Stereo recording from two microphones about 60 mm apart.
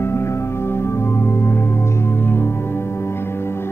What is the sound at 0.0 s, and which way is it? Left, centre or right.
Music, left.